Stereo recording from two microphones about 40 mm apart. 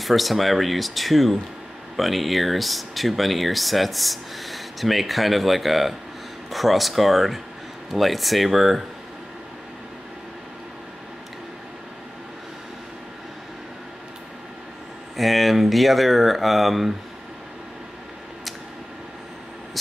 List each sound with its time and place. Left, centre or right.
0.0 s speech: centre
15.1 s speech: centre